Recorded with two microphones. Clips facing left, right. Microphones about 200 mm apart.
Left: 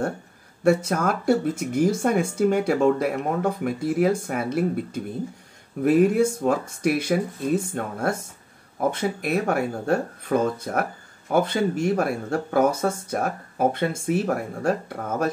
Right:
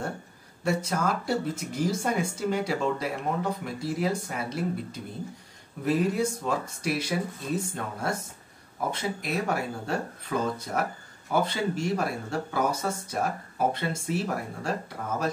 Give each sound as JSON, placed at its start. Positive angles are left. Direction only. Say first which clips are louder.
{"t": 0.7, "sound": "speech", "louder": "left 7 dB", "side_deg": 55}